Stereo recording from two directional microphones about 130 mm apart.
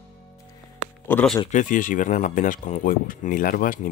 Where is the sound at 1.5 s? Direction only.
80° left.